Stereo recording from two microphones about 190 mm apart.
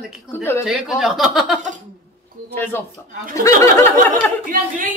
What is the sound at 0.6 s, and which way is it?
Speech, 5° right (ahead or behind).